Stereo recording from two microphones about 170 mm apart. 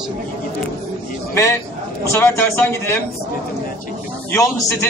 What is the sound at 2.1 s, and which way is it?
Speech, 15° left (ahead or behind).